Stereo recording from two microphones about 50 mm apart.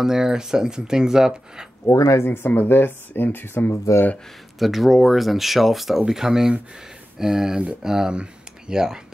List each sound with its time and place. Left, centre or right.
0.0 s speech: centre
1.9 s speech: left
3.7 s speech: left
4.6 s speech: centre